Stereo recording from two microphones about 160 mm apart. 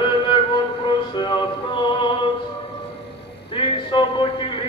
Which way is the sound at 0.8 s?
30° left (ahead or behind).